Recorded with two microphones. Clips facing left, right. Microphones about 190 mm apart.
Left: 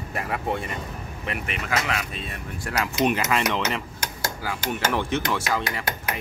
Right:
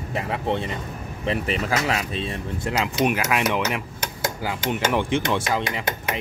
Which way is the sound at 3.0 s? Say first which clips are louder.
Even; 10° right (ahead or behind).